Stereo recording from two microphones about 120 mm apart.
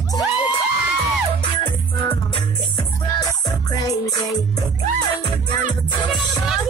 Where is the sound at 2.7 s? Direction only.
30° left (ahead or behind).